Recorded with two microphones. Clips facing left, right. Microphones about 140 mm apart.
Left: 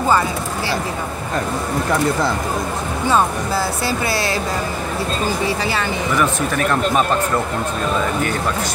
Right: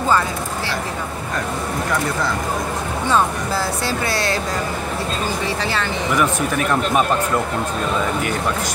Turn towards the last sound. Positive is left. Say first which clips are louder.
# left 1 dB
turn(degrees=-10)  # may be behind; listen again after turning